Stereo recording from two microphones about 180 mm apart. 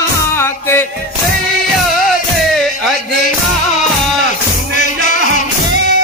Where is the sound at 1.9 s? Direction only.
Centre (ahead or behind).